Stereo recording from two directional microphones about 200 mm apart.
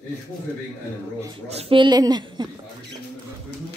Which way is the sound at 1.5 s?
30° right (ahead or behind).